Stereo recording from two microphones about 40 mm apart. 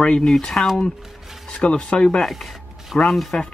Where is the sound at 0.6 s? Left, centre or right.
Left.